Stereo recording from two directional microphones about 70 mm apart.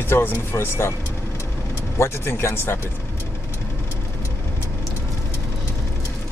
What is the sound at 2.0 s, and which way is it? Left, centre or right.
Speech, left.